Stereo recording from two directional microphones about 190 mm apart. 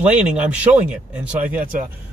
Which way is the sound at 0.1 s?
5° right (ahead or behind).